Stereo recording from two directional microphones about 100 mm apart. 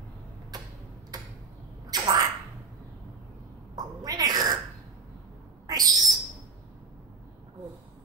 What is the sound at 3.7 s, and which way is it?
Sneeze, 40° right (ahead or behind).